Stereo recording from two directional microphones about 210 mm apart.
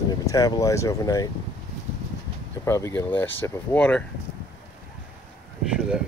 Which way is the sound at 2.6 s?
15° left (ahead or behind).